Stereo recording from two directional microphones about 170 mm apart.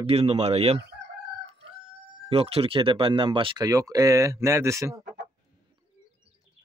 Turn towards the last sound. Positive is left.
turn(degrees=-15)  # may be behind; listen again after turning